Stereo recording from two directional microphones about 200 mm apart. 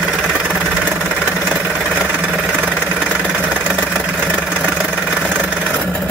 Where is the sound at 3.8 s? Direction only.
Centre (ahead or behind).